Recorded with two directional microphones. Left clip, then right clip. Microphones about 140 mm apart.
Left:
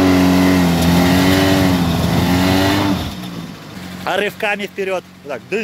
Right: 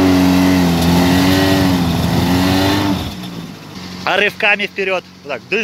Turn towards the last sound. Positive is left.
turn(degrees=10)  # may be behind; listen again after turning